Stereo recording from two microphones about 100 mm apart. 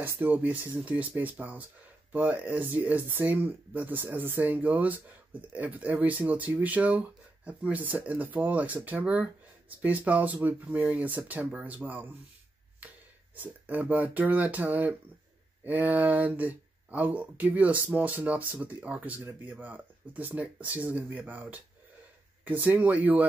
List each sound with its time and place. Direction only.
0.0 s speech: 20° right (ahead or behind)